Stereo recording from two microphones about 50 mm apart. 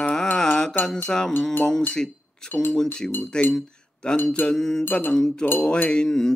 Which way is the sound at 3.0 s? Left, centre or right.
Centre.